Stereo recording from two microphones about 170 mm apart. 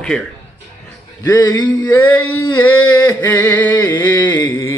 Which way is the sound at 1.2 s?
20° left (ahead or behind).